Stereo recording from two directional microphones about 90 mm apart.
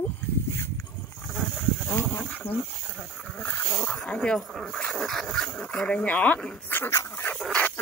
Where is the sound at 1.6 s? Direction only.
20° left (ahead or behind).